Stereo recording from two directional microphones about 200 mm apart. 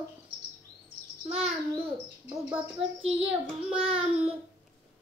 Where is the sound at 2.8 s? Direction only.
30° right (ahead or behind).